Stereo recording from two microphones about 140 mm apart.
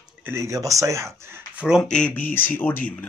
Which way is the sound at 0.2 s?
20° right (ahead or behind).